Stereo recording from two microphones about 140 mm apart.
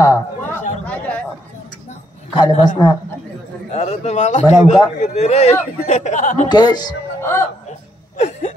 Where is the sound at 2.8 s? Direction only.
30° left (ahead or behind).